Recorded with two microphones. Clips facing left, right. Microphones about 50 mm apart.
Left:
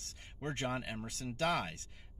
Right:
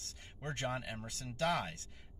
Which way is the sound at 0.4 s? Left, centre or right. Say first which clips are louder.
Left 1 dB; left.